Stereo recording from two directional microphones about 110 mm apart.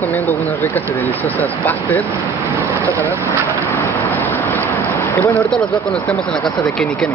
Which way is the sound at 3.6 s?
20° left (ahead or behind).